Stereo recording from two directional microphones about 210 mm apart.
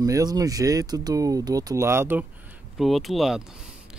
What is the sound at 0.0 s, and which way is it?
Speech, 15° right (ahead or behind).